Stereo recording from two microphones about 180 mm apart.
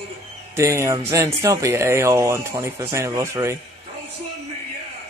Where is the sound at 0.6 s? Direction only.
15° right (ahead or behind).